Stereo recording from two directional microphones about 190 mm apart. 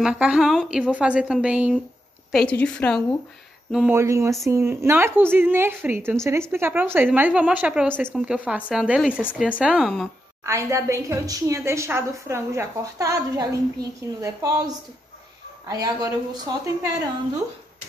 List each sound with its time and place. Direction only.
0.0 s a woman's voice: 5° right (ahead or behind)
2.3 s a woman's voice: 5° left (ahead or behind)
3.7 s a woman's voice: 10° right (ahead or behind)
10.4 s a woman's voice: 15° right (ahead or behind)